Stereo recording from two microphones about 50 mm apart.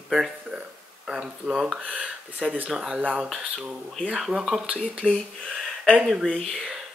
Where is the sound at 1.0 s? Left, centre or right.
Centre.